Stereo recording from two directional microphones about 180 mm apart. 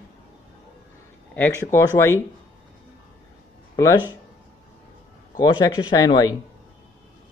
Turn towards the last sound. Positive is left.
turn(degrees=20)  # may be behind; listen again after turning